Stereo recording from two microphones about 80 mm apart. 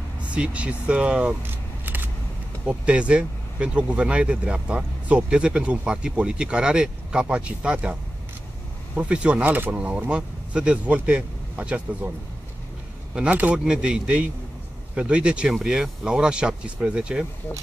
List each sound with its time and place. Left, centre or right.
0.3 s speech: centre
1.5 s a sound: right
2.6 s speech: centre
13.1 s speech: centre